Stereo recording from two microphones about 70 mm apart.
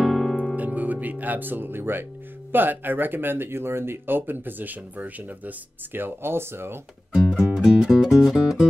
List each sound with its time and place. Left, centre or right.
0.0 s music: centre
0.6 s music: right
2.5 s speech: right
7.2 s music: centre